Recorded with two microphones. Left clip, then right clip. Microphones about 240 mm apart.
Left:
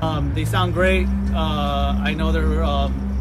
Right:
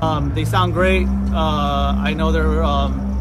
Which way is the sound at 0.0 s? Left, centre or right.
Centre.